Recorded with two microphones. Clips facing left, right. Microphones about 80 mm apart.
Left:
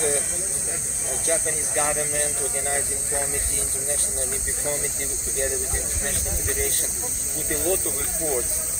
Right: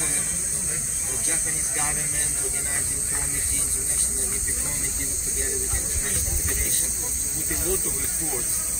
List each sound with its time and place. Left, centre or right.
1.2 s speech: left